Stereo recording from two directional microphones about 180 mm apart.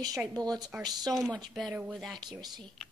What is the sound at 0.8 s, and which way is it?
Speech, 20° right (ahead or behind).